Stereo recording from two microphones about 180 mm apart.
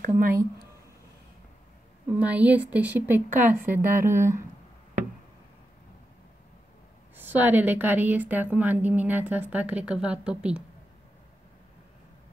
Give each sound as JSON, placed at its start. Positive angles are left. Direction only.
{"t": 0.0, "sound": "speech", "side_deg": -50}
{"t": 2.1, "sound": "a woman's voice", "side_deg": -10}
{"t": 7.2, "sound": "a woman's voice", "side_deg": -10}